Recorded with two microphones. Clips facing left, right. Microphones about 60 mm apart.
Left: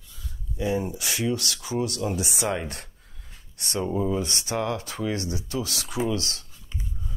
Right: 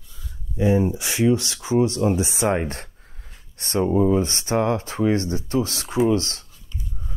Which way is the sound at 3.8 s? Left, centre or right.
Right.